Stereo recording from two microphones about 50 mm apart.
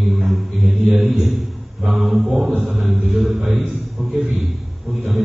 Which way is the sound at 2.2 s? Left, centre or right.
Right.